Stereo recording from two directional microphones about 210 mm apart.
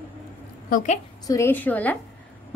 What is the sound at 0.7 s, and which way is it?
Speech, 35° left (ahead or behind).